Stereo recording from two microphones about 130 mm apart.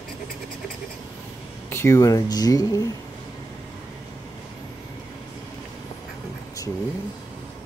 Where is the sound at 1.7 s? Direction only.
20° left (ahead or behind).